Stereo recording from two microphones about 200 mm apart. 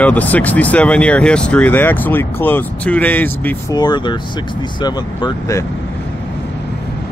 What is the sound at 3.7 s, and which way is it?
Speech, 20° left (ahead or behind).